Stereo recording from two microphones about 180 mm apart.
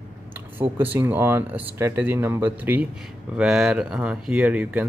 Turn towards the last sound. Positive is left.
turn(degrees=-5)  # may be behind; listen again after turning